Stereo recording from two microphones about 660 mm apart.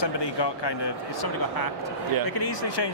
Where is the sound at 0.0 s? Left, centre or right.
Left.